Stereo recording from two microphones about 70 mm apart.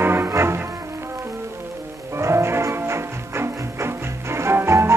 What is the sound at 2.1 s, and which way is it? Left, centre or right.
Music, right.